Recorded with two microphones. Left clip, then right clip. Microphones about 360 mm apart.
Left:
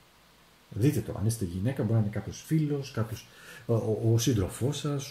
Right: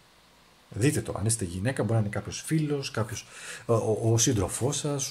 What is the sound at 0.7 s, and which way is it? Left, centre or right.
Speech, right.